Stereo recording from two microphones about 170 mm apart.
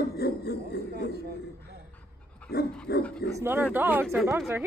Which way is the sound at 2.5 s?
70° left (ahead or behind).